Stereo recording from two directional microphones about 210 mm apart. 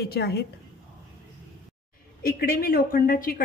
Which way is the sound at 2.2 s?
45° left (ahead or behind).